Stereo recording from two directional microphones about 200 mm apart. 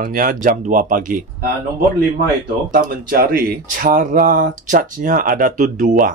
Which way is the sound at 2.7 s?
45° right (ahead or behind).